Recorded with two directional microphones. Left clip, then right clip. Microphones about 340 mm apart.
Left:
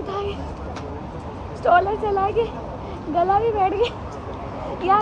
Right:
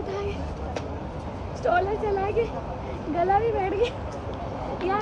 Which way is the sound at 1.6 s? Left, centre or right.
Left.